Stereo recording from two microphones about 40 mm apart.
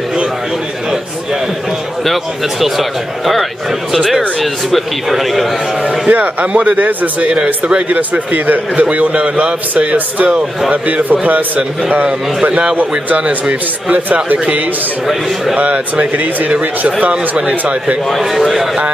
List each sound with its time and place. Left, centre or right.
2.6 s a man's voice: centre
5.9 s speech: right
15.5 s speech: right
18.1 s a man's voice: centre